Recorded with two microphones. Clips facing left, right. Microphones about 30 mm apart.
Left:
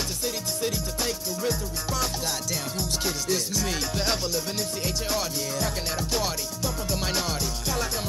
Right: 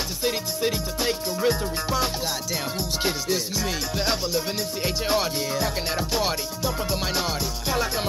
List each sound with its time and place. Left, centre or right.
0.2 s music: right
3.3 s music: centre
4.8 s music: right